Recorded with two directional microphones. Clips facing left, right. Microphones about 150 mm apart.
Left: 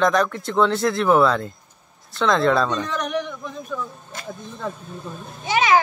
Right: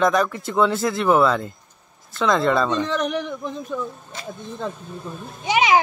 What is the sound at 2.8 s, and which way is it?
Speech, 30° right (ahead or behind).